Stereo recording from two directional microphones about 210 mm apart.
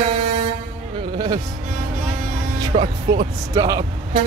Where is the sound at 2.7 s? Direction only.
30° right (ahead or behind).